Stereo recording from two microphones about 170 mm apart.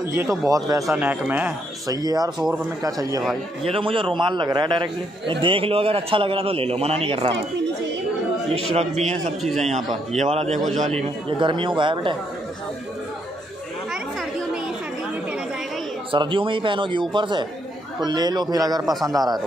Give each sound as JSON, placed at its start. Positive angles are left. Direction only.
{"t": 0.1, "sound": "a man's voice", "side_deg": -15}
{"t": 0.9, "sound": "speech", "side_deg": -10}
{"t": 1.9, "sound": "a man's voice", "side_deg": -20}
{"t": 3.6, "sound": "a man's voice", "side_deg": -30}
{"t": 9.4, "sound": "a man's voice", "side_deg": 0}
{"t": 10.1, "sound": "a man's voice", "side_deg": -40}
{"t": 16.1, "sound": "a man's voice", "side_deg": -30}